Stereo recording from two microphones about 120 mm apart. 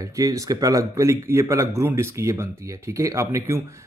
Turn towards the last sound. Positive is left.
turn(degrees=-25)  # may be behind; listen again after turning